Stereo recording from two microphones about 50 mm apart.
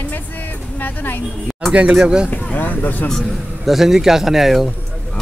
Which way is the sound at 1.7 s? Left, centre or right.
Right.